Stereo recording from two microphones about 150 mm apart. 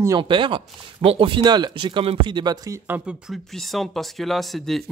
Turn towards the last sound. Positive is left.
turn(degrees=0)  # may be behind; listen again after turning